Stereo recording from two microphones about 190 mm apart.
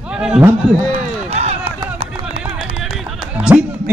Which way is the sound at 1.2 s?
35° right (ahead or behind).